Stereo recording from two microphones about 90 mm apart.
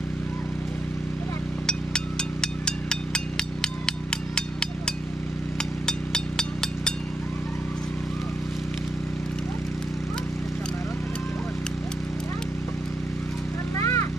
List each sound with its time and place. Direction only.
1.7 s a sound: 10° left (ahead or behind)
5.9 s vehicle: 10° left (ahead or behind)
13.7 s vehicle: 30° left (ahead or behind)